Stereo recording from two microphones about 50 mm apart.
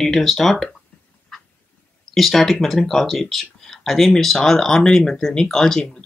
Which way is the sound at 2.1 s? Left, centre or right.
Centre.